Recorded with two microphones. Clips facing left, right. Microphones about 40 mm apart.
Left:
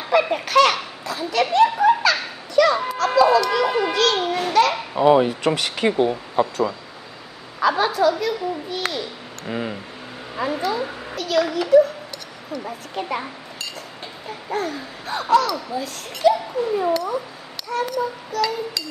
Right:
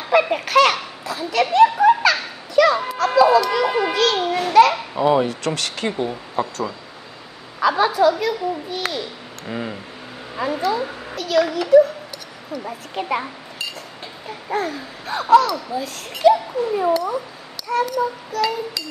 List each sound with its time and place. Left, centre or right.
0.0 s babbling: centre
7.6 s a child's voice: centre